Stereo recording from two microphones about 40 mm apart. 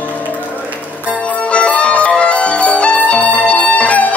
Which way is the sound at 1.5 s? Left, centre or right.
Left.